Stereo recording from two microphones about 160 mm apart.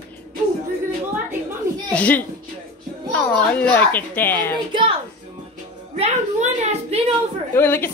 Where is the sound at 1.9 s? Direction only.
10° left (ahead or behind).